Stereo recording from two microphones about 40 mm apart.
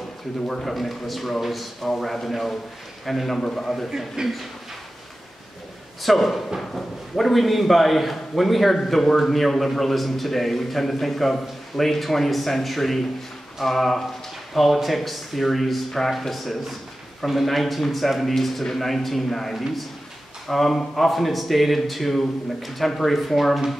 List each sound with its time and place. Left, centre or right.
0.5 s a man's voice: centre
3.3 s a man's voice: centre
4.2 s speech: centre
6.0 s a man's voice: centre